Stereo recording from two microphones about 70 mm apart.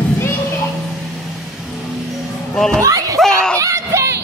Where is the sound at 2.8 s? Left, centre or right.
Right.